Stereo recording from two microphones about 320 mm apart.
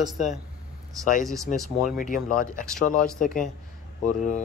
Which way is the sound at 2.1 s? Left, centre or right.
Left.